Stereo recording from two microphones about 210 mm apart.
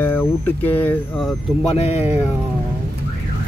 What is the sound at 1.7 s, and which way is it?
Speech, 30° left (ahead or behind).